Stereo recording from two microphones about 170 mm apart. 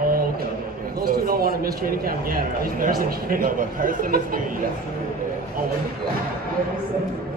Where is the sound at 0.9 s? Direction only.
60° right (ahead or behind).